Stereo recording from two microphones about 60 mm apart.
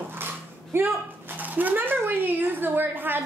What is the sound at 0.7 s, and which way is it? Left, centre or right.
Speech, right.